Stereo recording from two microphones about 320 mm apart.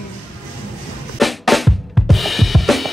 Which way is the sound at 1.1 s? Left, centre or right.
Centre.